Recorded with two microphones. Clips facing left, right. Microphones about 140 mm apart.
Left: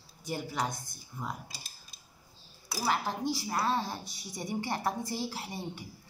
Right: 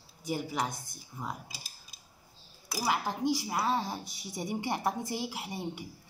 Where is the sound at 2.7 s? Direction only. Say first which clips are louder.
Even; 10° right (ahead or behind).